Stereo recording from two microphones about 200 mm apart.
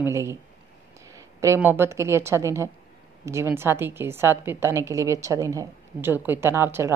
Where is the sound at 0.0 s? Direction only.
15° right (ahead or behind).